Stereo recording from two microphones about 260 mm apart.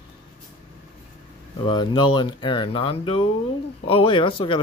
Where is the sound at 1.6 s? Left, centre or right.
Centre.